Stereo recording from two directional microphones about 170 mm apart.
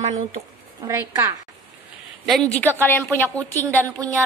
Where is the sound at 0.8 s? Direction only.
15° right (ahead or behind).